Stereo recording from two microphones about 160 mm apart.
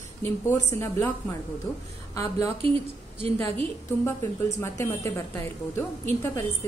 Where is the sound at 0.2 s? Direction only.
15° left (ahead or behind).